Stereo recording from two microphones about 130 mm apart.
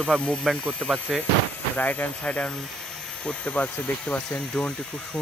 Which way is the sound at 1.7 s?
15° left (ahead or behind).